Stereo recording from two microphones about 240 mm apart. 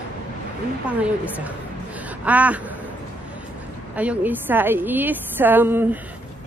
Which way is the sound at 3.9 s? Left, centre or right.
Centre.